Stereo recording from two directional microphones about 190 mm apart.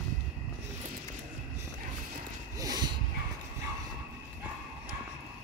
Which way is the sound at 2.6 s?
20° right (ahead or behind).